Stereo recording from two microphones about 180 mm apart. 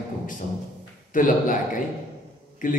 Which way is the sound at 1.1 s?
50° left (ahead or behind).